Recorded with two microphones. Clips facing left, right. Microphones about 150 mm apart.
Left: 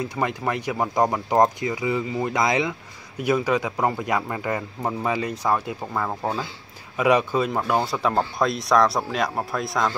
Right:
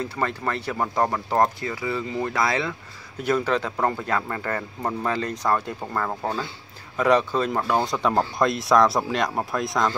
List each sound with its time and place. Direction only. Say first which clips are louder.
0.0 s speech: left 1 dB; 15° left (ahead or behind)